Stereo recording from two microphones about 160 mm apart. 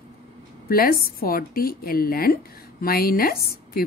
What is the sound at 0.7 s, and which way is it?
A woman's voice, 65° left (ahead or behind).